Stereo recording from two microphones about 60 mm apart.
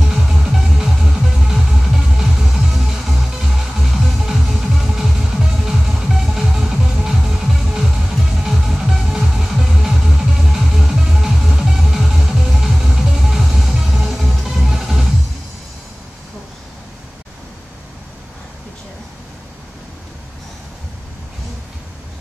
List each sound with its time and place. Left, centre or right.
0.0 s music: centre